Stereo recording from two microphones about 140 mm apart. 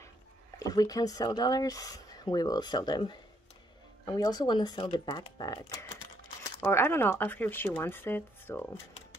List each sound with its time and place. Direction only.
0.6 s speech: 25° left (ahead or behind)